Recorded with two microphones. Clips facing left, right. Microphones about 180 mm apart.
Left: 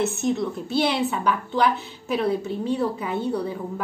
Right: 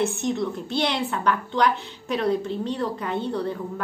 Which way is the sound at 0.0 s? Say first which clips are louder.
Left 1 dB; 5° left (ahead or behind).